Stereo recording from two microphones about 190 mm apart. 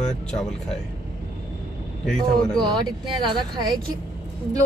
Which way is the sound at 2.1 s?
5° left (ahead or behind).